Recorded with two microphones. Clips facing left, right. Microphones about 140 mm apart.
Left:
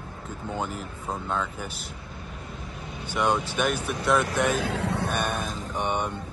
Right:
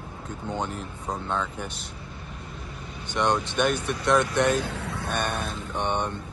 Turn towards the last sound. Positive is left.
turn(degrees=10)  # may be behind; listen again after turning